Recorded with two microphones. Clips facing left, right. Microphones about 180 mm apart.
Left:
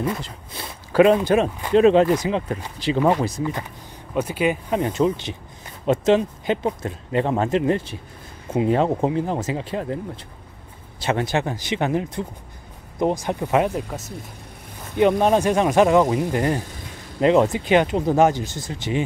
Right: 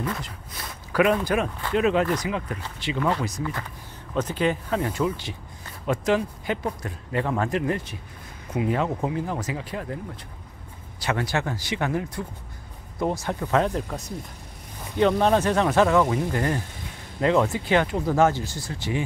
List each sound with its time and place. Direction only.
0.0 s speech: 25° left (ahead or behind)
4.1 s speech: 10° left (ahead or behind); by 9.9 s 25° left (ahead or behind)
11.0 s speech: 25° left (ahead or behind); by 14.1 s 5° left (ahead or behind)
15.0 s speech: 15° left (ahead or behind)